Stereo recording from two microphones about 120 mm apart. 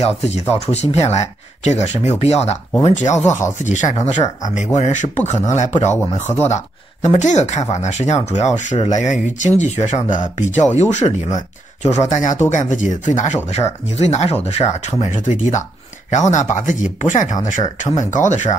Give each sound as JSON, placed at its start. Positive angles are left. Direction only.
{"t": 0.0, "sound": "speech", "side_deg": 60}
{"t": 2.0, "sound": "speech", "side_deg": 55}
{"t": 2.8, "sound": "speech", "side_deg": 80}
{"t": 3.3, "sound": "speech", "side_deg": 90}
{"t": 4.7, "sound": "speech", "side_deg": 75}
{"t": 6.2, "sound": "speech", "side_deg": 20}
{"t": 6.5, "sound": "speech", "side_deg": 75}
{"t": 8.7, "sound": "speech", "side_deg": 70}
{"t": 13.5, "sound": "speech", "side_deg": 65}